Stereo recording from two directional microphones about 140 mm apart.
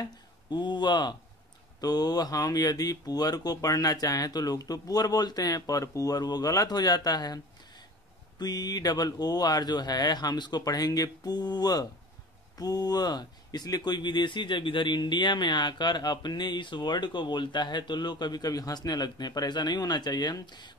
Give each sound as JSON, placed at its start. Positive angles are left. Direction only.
{"t": 0.5, "sound": "speech", "side_deg": 30}
{"t": 8.4, "sound": "speech", "side_deg": 30}